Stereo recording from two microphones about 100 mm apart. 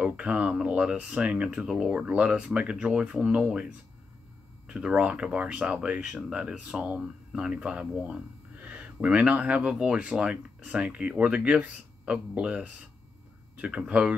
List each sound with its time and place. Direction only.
0.0 s speech: 10° right (ahead or behind)